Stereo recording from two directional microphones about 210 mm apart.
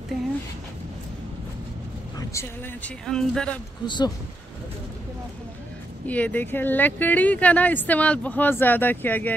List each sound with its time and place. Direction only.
2.1 s speech: 15° left (ahead or behind)
3.1 s speech: 5° left (ahead or behind)
3.8 s speech: 20° left (ahead or behind)
6.0 s speech: 5° left (ahead or behind)